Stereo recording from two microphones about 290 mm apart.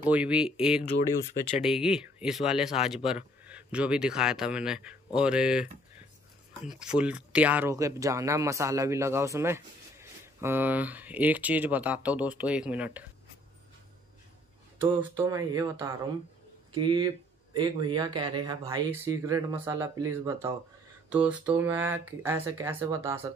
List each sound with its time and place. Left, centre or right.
0.1 s speech: centre
6.7 s speech: centre
14.8 s speech: centre